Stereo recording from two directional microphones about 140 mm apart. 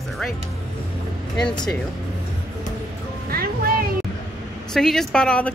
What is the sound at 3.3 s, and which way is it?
Music, 90° right.